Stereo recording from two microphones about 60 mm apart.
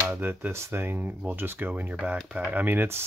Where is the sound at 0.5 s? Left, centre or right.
Right.